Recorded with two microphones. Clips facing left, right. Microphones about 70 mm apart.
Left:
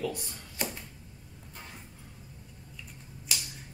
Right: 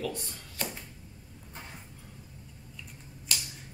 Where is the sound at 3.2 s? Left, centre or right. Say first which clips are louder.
Right 1 dB; centre.